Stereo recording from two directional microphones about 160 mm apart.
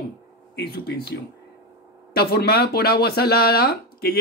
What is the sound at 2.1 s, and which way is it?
Speech, 75° left (ahead or behind).